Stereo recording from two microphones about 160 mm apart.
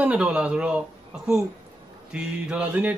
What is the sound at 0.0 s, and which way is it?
A man's voice, 5° right (ahead or behind).